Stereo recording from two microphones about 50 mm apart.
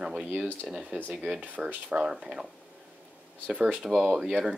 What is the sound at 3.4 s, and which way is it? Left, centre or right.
Speech, right.